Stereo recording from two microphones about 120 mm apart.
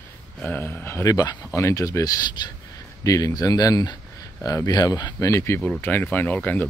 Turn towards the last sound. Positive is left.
turn(degrees=15)  # may be behind; listen again after turning